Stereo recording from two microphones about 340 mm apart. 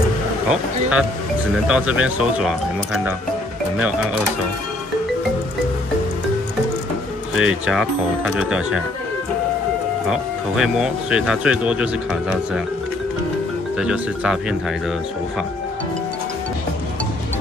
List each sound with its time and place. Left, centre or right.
0.5 s speech: centre
7.3 s speech: centre
10.0 s speech: centre
13.7 s speech: centre